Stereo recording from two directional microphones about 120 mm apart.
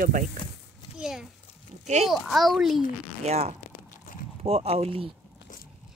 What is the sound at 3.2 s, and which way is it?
Speech, 65° right (ahead or behind).